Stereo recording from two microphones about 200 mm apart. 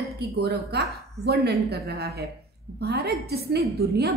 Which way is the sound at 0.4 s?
55° right (ahead or behind).